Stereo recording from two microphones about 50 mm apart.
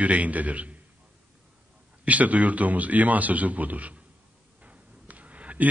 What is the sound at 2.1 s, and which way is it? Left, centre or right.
A man's voice, right.